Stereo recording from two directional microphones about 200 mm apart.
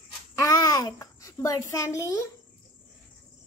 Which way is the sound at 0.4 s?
15° left (ahead or behind).